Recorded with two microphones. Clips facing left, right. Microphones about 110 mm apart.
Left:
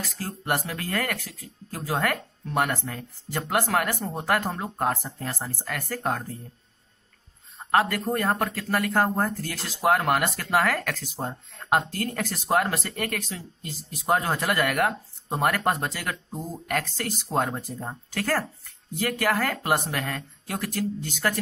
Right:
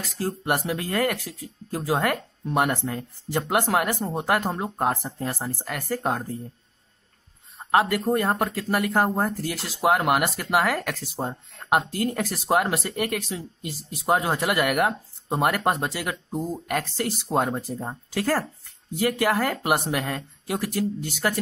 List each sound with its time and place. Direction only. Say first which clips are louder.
0.0 s speech: right 5 dB; 20° right (ahead or behind)
7.5 s a sound: right 2 dB; 15° right (ahead or behind)
8.1 s speech: right 2 dB; 15° right (ahead or behind)